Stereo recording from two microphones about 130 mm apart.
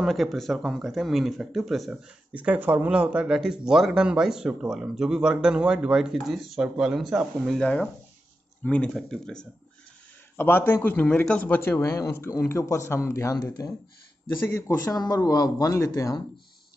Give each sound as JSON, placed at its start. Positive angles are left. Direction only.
{"t": 0.0, "sound": "speech", "side_deg": 0}
{"t": 10.3, "sound": "a man's voice", "side_deg": 15}
{"t": 14.3, "sound": "a man's voice", "side_deg": 20}